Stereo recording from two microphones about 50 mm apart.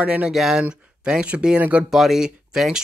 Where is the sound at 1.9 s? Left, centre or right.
Centre.